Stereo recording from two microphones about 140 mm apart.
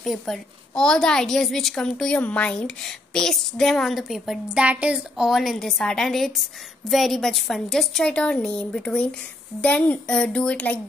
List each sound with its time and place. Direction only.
0.0 s a woman's voice: centre (ahead or behind)